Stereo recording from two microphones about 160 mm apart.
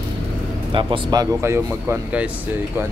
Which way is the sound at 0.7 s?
25° right (ahead or behind).